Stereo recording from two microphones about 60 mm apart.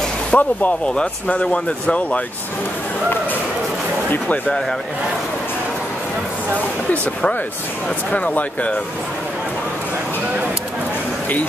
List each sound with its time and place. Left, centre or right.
0.3 s speech: left
6.9 s speech: centre